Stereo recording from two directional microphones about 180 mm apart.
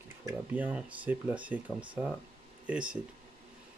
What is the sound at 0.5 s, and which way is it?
Speech, 10° right (ahead or behind).